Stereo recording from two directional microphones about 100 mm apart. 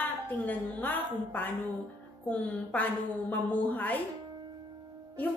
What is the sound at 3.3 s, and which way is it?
Speech, 15° left (ahead or behind).